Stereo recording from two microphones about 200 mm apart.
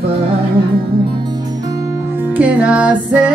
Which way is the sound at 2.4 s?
5° right (ahead or behind).